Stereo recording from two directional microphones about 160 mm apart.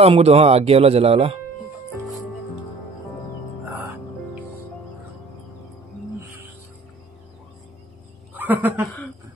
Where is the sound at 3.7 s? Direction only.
10° right (ahead or behind).